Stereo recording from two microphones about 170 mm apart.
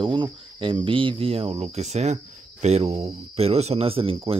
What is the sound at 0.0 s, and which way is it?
Speech, 30° right (ahead or behind).